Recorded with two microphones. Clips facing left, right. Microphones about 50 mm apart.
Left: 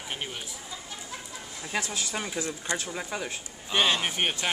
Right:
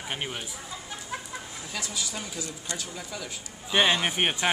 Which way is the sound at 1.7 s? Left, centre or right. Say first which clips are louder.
Left 4 dB; left.